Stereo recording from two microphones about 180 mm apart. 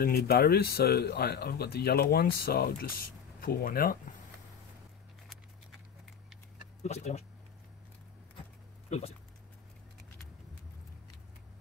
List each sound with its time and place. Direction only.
0.0 s speech: 60° left (ahead or behind)
6.8 s speech: 40° left (ahead or behind)